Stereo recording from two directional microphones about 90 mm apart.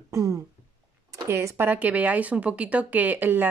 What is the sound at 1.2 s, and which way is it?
Speech, 30° right (ahead or behind).